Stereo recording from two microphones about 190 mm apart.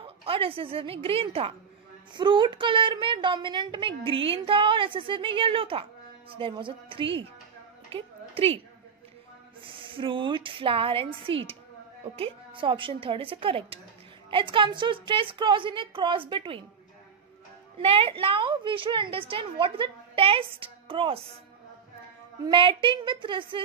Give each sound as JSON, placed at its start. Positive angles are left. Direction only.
{"t": 0.0, "sound": "a sound", "side_deg": -30}
{"t": 1.0, "sound": "speech", "side_deg": -30}
{"t": 7.9, "sound": "a sound", "side_deg": -30}
{"t": 9.6, "sound": "speech", "side_deg": -25}
{"t": 17.7, "sound": "speech", "side_deg": -30}
{"t": 22.5, "sound": "speech", "side_deg": -25}